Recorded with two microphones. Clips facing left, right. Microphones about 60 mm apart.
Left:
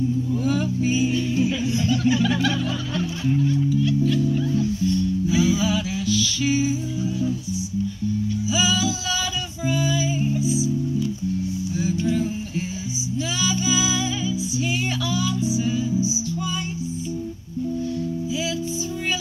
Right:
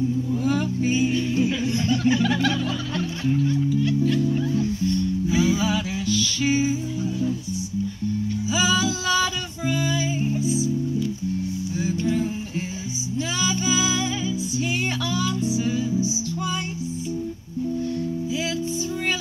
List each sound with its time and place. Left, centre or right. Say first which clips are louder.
0.4 s music: even; right
8.5 s female singing: right 1 dB; right
11.8 s music: left 1 dB; right
13.3 s music: even; right